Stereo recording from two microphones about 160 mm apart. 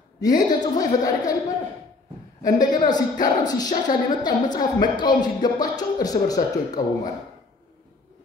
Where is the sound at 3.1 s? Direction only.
55° left (ahead or behind).